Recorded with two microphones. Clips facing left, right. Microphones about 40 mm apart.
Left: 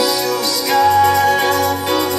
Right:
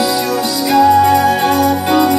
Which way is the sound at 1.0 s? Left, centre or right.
Right.